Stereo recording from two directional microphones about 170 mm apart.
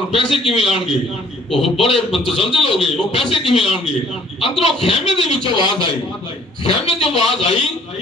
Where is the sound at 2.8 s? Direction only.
35° left (ahead or behind).